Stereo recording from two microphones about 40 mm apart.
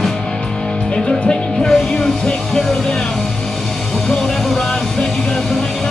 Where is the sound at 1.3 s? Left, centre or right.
Centre.